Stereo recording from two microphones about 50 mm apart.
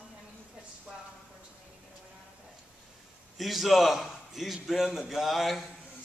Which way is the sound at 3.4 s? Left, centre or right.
Centre.